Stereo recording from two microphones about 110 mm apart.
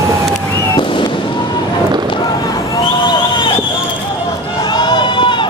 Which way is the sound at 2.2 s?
35° left (ahead or behind).